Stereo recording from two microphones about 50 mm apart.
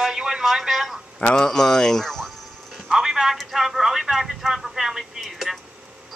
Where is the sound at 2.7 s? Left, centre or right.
Centre.